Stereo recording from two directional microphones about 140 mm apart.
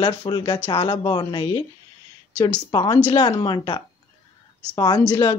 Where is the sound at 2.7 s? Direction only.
30° left (ahead or behind).